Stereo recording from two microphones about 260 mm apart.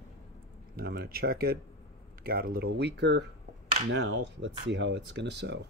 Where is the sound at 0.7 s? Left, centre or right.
Right.